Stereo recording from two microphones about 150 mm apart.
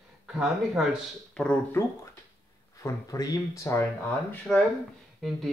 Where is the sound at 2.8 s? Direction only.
25° left (ahead or behind).